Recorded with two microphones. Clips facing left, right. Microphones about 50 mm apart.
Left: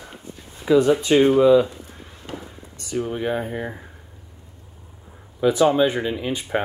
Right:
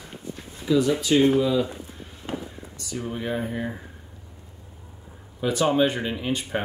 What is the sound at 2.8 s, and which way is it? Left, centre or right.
Speech, left.